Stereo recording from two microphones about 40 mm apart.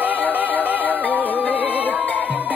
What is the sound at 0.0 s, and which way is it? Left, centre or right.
Music, left.